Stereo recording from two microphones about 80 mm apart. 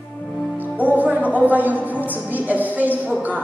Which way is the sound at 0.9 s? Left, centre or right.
Centre.